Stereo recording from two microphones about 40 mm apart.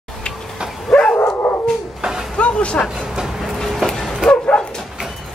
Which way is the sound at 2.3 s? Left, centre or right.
Left.